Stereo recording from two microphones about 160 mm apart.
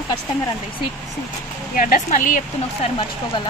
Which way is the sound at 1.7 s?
60° left (ahead or behind).